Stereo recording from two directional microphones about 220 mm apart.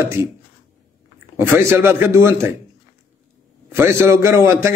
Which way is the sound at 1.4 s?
10° right (ahead or behind).